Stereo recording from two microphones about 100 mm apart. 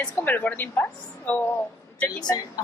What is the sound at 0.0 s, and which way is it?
A woman's voice, 15° left (ahead or behind).